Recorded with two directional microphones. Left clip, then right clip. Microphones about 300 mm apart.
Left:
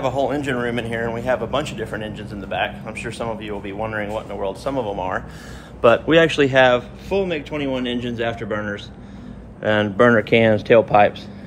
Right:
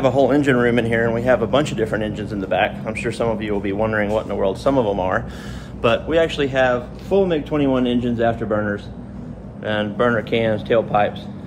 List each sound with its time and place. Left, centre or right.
0.0 s speech: centre
6.0 s speech: left
7.1 s speech: centre
8.5 s speech: centre